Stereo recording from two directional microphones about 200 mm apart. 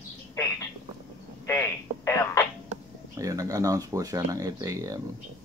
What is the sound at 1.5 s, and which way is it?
Telephone, 15° left (ahead or behind).